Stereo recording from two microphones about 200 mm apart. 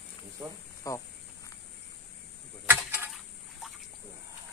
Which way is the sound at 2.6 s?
10° right (ahead or behind).